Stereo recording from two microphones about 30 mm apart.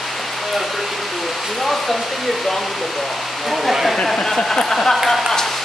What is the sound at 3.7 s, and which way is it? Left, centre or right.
Speech, centre.